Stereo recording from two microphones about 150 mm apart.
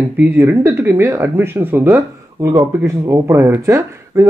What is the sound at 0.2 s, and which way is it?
Speech, 15° right (ahead or behind).